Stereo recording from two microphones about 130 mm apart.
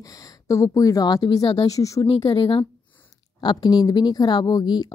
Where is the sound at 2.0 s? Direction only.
45° left (ahead or behind).